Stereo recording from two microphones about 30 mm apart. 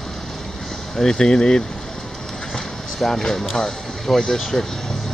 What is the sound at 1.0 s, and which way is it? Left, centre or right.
Speech, left.